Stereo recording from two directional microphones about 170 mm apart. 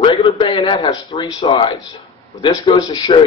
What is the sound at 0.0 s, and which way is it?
A man's voice, 30° left (ahead or behind).